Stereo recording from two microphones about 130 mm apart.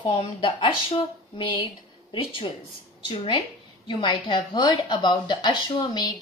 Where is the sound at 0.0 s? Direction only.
40° left (ahead or behind).